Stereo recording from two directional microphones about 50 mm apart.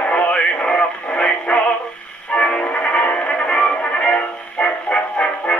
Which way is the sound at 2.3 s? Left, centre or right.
Centre.